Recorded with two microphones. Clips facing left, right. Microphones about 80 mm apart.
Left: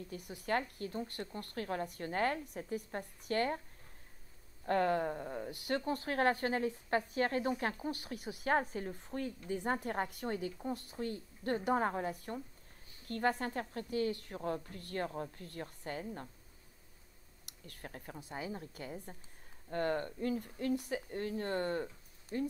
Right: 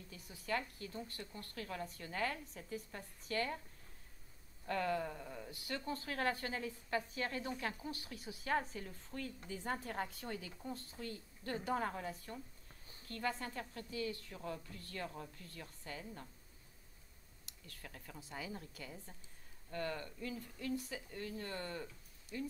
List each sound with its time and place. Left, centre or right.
0.2 s a woman's voice: left
4.6 s a woman's voice: left
5.5 s a woman's voice: left
13.1 s a woman's voice: left
17.6 s a woman's voice: left